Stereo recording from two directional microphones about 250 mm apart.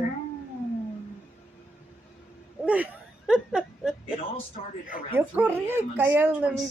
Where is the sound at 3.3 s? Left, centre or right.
Centre.